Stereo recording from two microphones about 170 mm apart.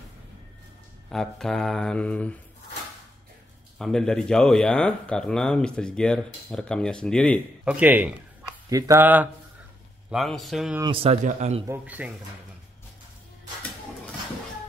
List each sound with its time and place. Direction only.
1.1 s speech: 5° left (ahead or behind)
3.7 s speech: 5° left (ahead or behind)
7.6 s speech: 10° right (ahead or behind)
10.1 s speech: centre (ahead or behind)
10.8 s speech: 30° right (ahead or behind)
11.2 s speech: 40° right (ahead or behind)
11.6 s speech: 10° right (ahead or behind)